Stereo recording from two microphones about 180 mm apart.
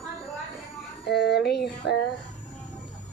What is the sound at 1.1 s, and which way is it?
Speech, 65° left (ahead or behind).